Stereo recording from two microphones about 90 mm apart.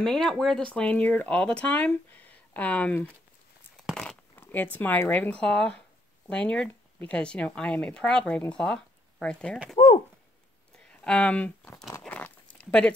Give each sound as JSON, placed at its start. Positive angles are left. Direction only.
{"t": 0.0, "sound": "speech", "side_deg": 5}
{"t": 0.7, "sound": "speech", "side_deg": 15}
{"t": 3.7, "sound": "a sound", "side_deg": 0}
{"t": 4.4, "sound": "speech", "side_deg": 20}
{"t": 10.9, "sound": "speech", "side_deg": 10}
{"t": 12.1, "sound": "a sound", "side_deg": 15}